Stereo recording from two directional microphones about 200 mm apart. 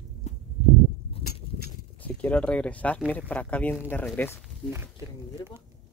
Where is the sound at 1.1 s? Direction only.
30° left (ahead or behind).